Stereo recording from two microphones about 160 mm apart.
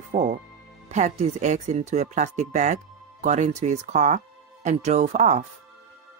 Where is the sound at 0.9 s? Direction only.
45° right (ahead or behind).